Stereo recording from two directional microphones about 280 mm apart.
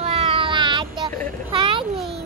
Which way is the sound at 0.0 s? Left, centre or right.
Centre.